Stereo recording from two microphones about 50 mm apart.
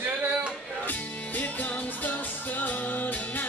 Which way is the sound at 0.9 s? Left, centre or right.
Left.